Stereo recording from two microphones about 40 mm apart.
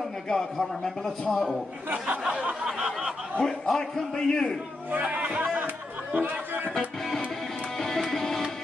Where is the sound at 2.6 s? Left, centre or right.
Right.